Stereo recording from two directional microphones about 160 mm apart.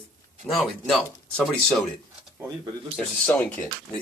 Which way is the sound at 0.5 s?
Centre (ahead or behind).